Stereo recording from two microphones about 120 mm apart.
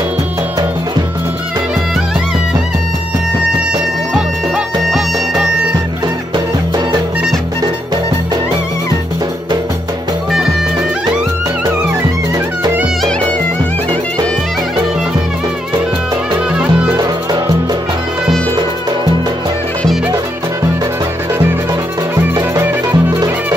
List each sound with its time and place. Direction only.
22.6 s music: 15° right (ahead or behind)